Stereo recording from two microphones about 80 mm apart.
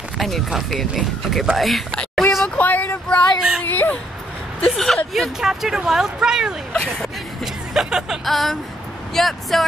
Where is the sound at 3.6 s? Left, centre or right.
Left.